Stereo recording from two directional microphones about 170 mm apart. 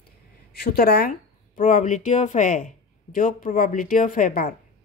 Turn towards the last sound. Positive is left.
turn(degrees=55)  # may be behind; listen again after turning